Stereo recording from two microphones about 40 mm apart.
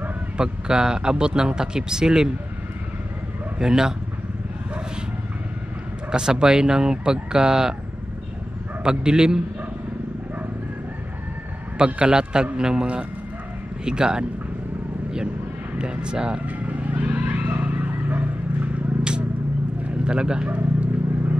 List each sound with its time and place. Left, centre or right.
0.4 s speech: centre
3.5 s speech: centre
6.1 s speech: right
8.8 s speech: centre
11.8 s speech: right
13.8 s speech: centre
15.8 s speech: right
16.4 s a sound: right
20.1 s speech: right
20.4 s vehicle: right